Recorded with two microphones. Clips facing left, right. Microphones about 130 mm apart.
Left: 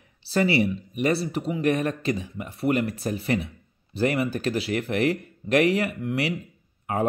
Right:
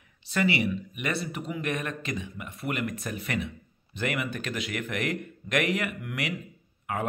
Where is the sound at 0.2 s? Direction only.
35° left (ahead or behind).